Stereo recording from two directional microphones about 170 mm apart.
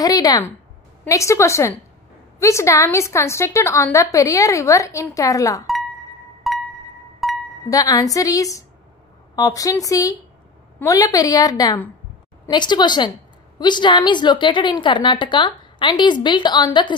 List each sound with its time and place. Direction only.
0.0 s a woman's voice: 25° left (ahead or behind)
6.5 s music: centre (ahead or behind)
7.7 s a woman's voice: 20° left (ahead or behind)